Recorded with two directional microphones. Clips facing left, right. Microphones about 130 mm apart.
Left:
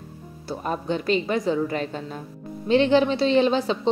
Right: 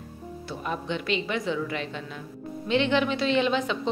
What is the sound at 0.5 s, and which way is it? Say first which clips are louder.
A woman's voice: left 5 dB; 40° left (ahead or behind).